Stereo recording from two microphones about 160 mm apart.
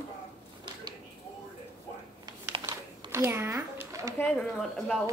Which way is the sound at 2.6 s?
15° right (ahead or behind).